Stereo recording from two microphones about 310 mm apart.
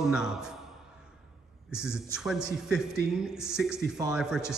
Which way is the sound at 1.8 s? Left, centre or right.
Centre.